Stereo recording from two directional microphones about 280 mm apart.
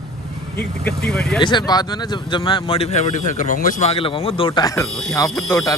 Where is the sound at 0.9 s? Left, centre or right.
Centre.